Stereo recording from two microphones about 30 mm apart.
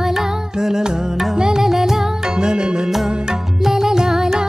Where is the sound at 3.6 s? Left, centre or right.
Centre.